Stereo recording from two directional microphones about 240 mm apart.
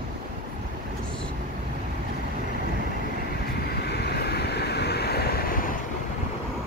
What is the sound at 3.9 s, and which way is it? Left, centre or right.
Waves, left.